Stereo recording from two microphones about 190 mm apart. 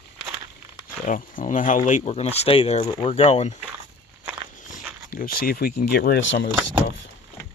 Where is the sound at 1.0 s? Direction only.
40° left (ahead or behind).